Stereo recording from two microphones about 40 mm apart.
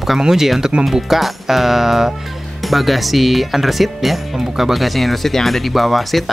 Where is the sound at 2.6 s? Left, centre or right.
Centre.